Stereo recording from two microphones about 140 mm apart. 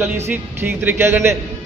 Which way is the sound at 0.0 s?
15° right (ahead or behind).